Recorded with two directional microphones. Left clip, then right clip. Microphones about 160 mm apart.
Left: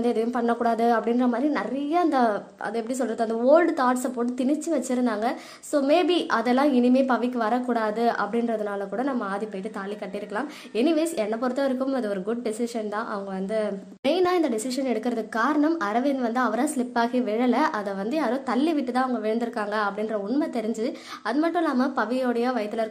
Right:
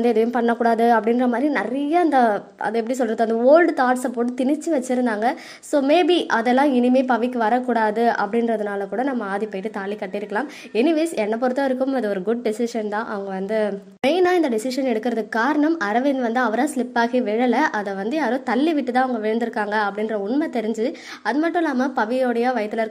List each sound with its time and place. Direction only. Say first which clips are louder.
0.0 s a woman's voice: right 6 dB; 25° right (ahead or behind)